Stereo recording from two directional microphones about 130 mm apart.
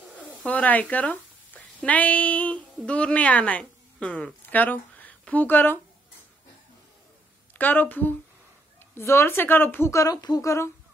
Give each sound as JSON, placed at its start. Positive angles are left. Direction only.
{"t": 0.5, "sound": "a woman's voice", "side_deg": 10}
{"t": 7.5, "sound": "speech", "side_deg": 15}